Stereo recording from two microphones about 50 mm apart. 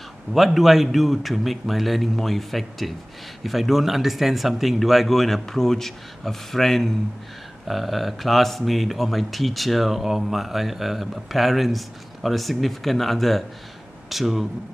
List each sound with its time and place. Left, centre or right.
0.3 s speech: centre